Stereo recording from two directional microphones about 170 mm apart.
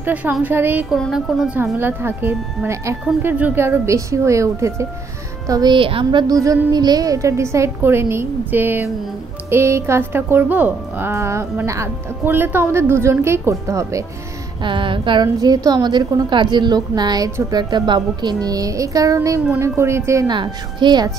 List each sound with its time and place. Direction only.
0.0 s a woman's voice: 10° right (ahead or behind)
0.9 s speech: centre (ahead or behind)
1.6 s a woman's voice: 15° right (ahead or behind)
14.6 s a woman's voice: 30° right (ahead or behind)